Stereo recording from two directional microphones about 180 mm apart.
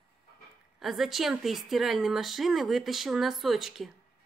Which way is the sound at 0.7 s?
Centre (ahead or behind).